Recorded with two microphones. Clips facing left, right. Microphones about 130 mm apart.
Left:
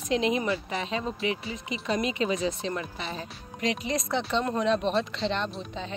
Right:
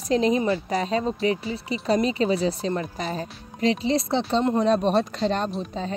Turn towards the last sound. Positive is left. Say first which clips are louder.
# right 5 dB
turn(degrees=-40)  # may be behind; listen again after turning